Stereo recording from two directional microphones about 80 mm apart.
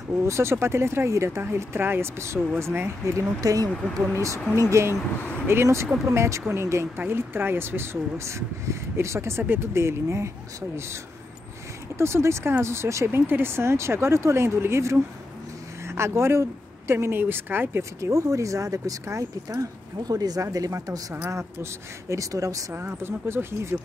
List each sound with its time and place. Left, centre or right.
0.3 s speech: right
3.3 s speech: right
12.0 s speech: right
18.0 s speech: right
22.8 s speech: right